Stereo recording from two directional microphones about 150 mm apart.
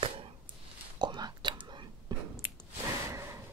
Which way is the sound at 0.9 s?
30° right (ahead or behind).